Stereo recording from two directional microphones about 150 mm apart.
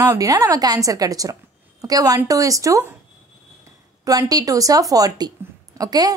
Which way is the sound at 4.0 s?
25° right (ahead or behind).